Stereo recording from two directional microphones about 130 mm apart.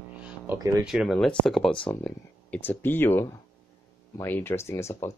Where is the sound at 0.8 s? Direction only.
Centre (ahead or behind).